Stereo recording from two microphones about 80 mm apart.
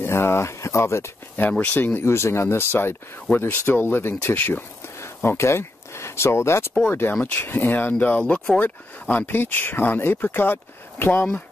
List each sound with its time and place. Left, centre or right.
0.0 s speech: left